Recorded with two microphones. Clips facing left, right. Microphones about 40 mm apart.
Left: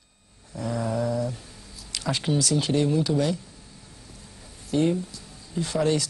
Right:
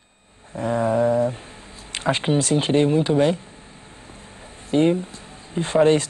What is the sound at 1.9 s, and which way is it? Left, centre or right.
Speech, right.